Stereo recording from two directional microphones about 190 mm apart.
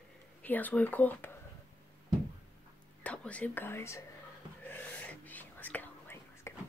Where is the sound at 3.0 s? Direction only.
5° left (ahead or behind).